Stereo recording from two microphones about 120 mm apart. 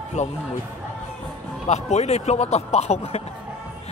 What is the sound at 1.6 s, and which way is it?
A man's voice, 65° left (ahead or behind).